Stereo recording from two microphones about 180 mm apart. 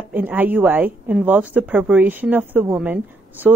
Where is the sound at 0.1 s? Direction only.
10° right (ahead or behind).